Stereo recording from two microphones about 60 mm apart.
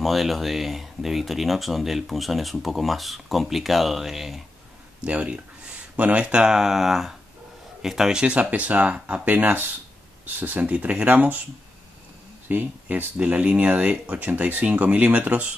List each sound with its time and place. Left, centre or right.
0.0 s speech: centre
5.0 s speech: right
6.4 s speech: centre; by 11.4 s right
12.4 s speech: right